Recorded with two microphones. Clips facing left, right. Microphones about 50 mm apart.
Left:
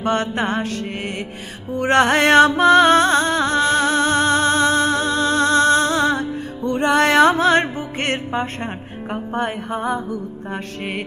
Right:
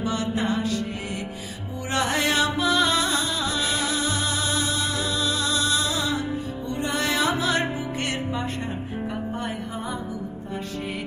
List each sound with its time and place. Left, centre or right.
0.0 s music: left
1.8 s music: left